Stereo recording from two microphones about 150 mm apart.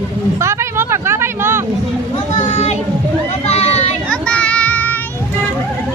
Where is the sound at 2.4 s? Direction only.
45° left (ahead or behind).